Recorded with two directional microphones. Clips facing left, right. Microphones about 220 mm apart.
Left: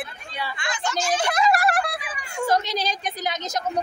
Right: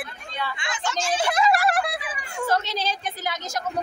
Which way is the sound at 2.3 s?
15° left (ahead or behind).